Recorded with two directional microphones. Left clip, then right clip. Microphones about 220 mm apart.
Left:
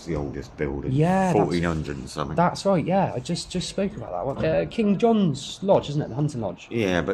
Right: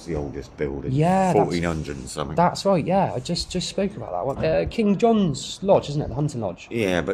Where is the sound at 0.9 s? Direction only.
25° right (ahead or behind).